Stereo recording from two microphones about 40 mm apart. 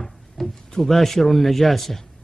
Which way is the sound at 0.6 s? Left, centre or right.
Centre.